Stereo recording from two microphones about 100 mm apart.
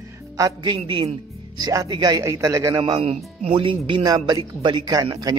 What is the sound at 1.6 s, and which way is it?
Speech, 40° right (ahead or behind).